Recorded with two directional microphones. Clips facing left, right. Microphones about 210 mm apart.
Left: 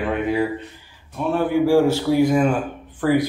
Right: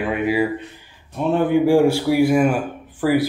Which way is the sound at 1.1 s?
20° right (ahead or behind).